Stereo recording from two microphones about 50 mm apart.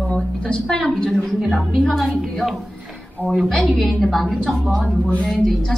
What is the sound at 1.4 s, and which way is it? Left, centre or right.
A woman's voice, centre.